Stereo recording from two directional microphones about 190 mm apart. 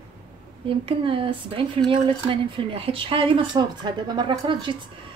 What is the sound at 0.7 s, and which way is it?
Speech, 30° right (ahead or behind).